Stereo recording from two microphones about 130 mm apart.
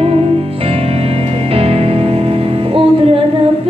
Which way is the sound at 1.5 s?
50° right (ahead or behind).